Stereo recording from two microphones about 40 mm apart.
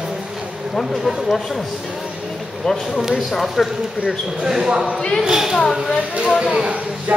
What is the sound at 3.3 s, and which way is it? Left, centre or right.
Speech, centre.